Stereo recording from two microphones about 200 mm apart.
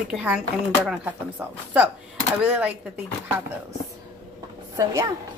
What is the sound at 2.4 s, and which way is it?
Speech, 5° right (ahead or behind).